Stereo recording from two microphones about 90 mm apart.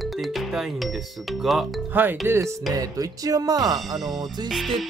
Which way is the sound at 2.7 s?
40° right (ahead or behind).